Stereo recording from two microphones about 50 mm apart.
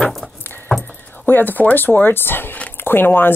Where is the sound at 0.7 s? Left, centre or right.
Centre.